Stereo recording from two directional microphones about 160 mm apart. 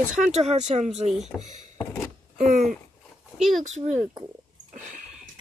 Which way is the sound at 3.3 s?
Centre (ahead or behind).